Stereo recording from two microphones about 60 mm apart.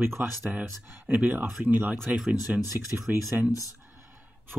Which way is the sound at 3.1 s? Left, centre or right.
Right.